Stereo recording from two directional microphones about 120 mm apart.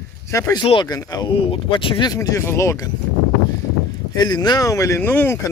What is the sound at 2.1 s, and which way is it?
Speech, 25° left (ahead or behind).